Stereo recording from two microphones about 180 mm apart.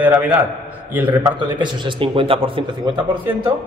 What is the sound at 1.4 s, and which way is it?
A man's voice, 25° right (ahead or behind).